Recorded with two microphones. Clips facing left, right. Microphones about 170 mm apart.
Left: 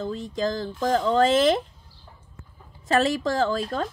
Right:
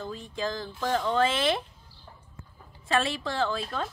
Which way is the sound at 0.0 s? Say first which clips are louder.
Left 6 dB; 40° left (ahead or behind).